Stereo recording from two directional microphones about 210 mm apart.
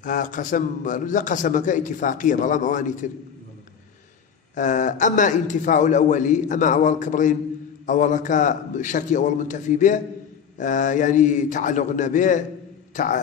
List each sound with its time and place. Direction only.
0.0 s a man's voice: 40° left (ahead or behind)
4.6 s a man's voice: 35° left (ahead or behind)